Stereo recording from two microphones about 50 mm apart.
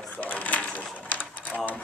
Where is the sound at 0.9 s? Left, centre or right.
Left.